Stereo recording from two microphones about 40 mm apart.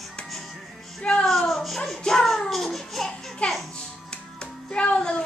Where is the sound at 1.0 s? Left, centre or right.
Left.